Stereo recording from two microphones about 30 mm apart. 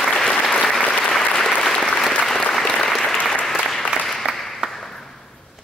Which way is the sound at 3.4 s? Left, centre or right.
Centre.